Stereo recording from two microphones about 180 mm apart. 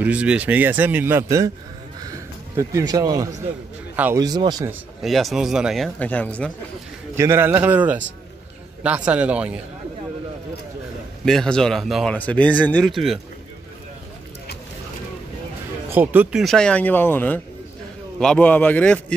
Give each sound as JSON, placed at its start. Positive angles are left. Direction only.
{"t": 0.0, "sound": "speech", "side_deg": -5}
{"t": 2.0, "sound": "a sound", "side_deg": -20}
{"t": 3.9, "sound": "speech", "side_deg": -10}
{"t": 4.2, "sound": "speech", "side_deg": -20}
{"t": 5.0, "sound": "speech", "side_deg": 0}
{"t": 5.9, "sound": "a man's voice", "side_deg": 10}
{"t": 7.2, "sound": "speech", "side_deg": -15}
{"t": 11.2, "sound": "speech", "side_deg": 5}
{"t": 15.9, "sound": "a man's voice", "side_deg": -10}